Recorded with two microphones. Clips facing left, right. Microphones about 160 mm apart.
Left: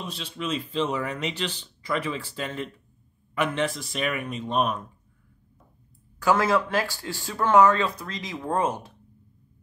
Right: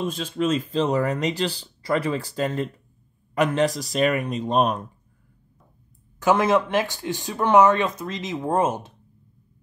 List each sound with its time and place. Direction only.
0.0 s speech: 45° right (ahead or behind)
6.1 s speech: 20° right (ahead or behind)